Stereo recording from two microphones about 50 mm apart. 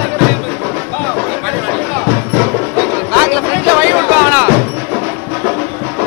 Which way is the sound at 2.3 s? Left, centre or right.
Right.